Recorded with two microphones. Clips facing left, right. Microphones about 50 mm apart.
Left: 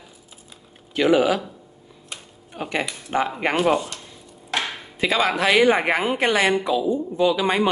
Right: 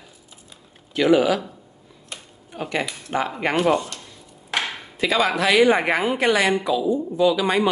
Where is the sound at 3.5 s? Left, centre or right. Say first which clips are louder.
Right 1 dB; centre.